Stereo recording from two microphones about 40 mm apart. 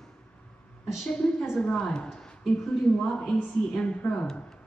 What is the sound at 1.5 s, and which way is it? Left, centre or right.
Speech, left.